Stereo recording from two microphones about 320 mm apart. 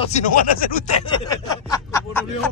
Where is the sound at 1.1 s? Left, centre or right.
Centre.